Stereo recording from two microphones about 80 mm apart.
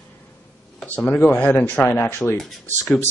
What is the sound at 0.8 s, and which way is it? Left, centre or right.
Speech, centre.